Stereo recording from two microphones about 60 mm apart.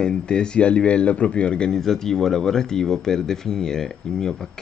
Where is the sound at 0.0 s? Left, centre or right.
Centre.